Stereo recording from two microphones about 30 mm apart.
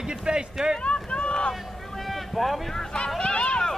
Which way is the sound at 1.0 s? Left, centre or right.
Left.